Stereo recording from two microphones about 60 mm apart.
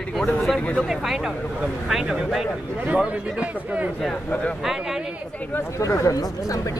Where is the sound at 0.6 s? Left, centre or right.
Left.